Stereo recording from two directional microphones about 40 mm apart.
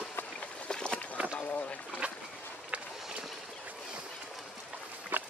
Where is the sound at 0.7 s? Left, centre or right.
Centre.